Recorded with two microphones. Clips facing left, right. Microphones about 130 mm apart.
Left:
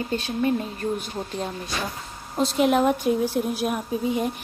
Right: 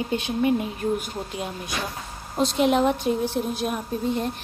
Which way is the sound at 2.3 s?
Centre (ahead or behind).